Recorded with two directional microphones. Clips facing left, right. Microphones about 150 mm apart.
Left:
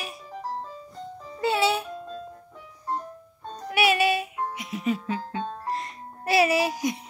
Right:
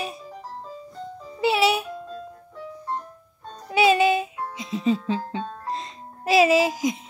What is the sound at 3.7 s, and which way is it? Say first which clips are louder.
Music: right 4 dB; 20° right (ahead or behind).